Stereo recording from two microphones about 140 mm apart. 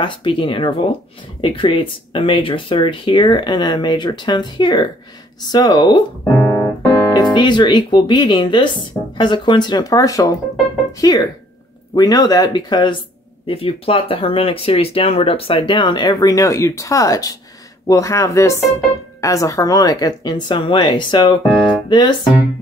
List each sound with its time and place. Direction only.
0.0 s speech: 35° left (ahead or behind)